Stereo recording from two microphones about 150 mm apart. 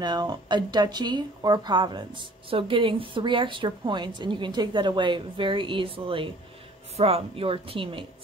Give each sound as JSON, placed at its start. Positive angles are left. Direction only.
{"t": 0.0, "sound": "speech", "side_deg": -30}